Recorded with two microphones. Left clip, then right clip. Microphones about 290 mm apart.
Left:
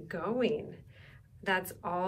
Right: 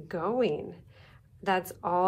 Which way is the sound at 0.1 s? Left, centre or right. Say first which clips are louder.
Right 3 dB; centre.